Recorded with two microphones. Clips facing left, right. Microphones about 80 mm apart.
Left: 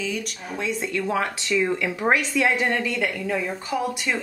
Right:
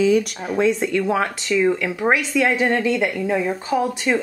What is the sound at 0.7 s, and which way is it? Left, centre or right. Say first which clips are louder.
Speech: right 5 dB; right.